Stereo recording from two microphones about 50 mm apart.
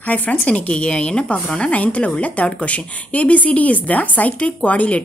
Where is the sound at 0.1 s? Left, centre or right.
Left.